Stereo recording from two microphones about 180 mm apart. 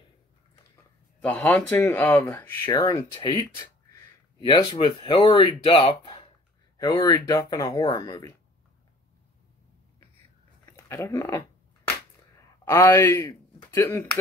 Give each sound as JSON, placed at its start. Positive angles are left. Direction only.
{"t": 1.2, "sound": "speech", "side_deg": 10}
{"t": 10.6, "sound": "a man's voice", "side_deg": 15}